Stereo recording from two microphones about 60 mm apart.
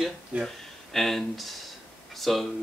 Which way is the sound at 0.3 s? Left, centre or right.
Right.